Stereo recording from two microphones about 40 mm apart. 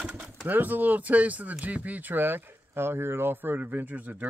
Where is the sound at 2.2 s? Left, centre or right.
Right.